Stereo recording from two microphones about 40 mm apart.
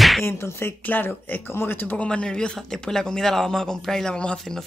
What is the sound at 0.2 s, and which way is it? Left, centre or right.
Speech, left.